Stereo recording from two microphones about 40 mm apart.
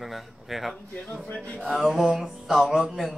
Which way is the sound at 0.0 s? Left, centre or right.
Centre.